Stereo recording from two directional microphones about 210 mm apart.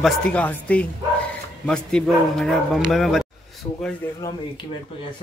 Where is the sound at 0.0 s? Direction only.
5° left (ahead or behind).